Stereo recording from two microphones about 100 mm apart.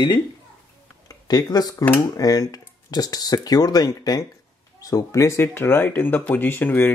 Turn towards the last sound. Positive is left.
turn(degrees=20)  # may be behind; listen again after turning